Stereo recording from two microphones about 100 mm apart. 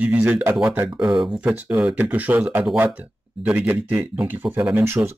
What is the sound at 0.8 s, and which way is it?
Speech, 10° right (ahead or behind).